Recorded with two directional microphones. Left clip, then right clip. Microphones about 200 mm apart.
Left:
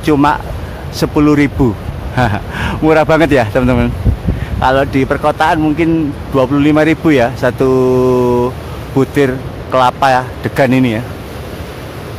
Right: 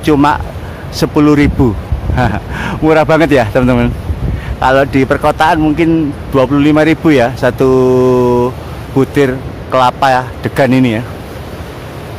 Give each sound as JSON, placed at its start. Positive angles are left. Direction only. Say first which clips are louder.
{"t": 0.0, "sound": "speech", "louder": "right 1 dB", "side_deg": -10}